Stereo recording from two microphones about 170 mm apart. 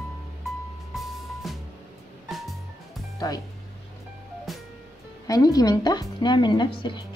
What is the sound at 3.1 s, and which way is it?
Music, 20° left (ahead or behind).